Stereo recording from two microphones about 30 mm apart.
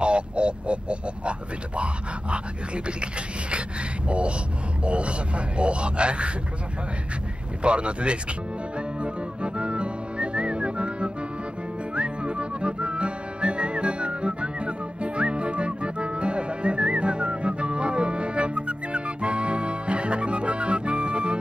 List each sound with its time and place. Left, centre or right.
0.0 s a sound: right
2.3 s a man's voice: right
7.6 s a man's voice: right
8.7 s whistling: right
11.9 s music: right